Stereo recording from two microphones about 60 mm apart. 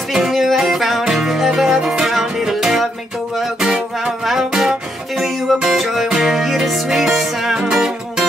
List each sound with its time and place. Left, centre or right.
0.1 s music: centre